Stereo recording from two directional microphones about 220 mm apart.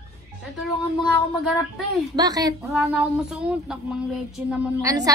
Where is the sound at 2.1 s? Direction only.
15° right (ahead or behind).